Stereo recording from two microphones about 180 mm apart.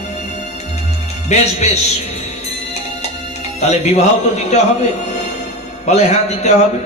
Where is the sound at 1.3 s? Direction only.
35° left (ahead or behind).